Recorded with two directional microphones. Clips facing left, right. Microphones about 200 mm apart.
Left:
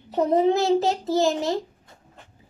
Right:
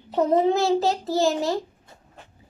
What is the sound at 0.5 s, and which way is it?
Child singing, 20° left (ahead or behind).